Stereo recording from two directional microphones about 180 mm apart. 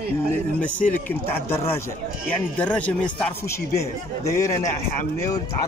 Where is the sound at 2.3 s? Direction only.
10° left (ahead or behind).